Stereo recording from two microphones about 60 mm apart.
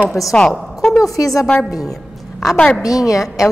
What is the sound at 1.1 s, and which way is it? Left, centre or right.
Speech, left.